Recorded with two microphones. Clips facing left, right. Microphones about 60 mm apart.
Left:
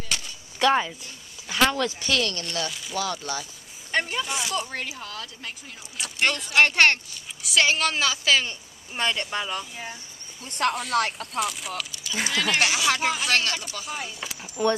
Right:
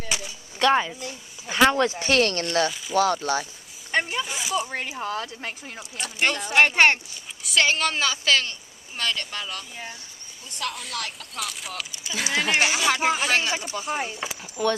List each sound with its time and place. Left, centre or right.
0.6 s speech: centre
1.5 s a sound: centre
1.9 s speech: right
3.9 s a sound: centre
4.8 s speech: right
5.9 s a woman's voice: centre
8.5 s speech: left
10.6 s speech: left
11.0 s speech: left
11.3 s a woman's voice: centre
12.3 s speech: centre
12.8 s a woman's voice: centre